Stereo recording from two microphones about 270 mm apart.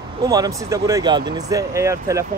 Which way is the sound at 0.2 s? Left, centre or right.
Centre.